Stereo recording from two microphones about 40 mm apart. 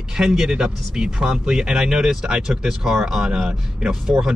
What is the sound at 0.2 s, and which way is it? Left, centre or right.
Speech, centre.